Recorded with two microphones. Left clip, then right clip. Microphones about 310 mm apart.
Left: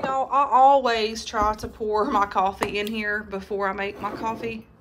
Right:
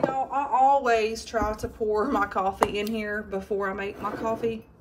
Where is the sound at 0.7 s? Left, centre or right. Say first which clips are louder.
Left 3 dB; centre.